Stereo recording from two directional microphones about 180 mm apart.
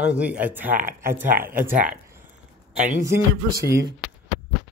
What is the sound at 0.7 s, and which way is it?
Speech, 50° right (ahead or behind).